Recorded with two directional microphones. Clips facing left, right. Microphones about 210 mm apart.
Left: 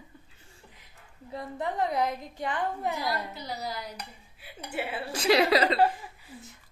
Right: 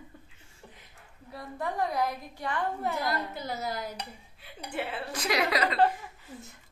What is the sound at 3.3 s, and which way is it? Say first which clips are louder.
Speech: right 2 dB; 50° right (ahead or behind).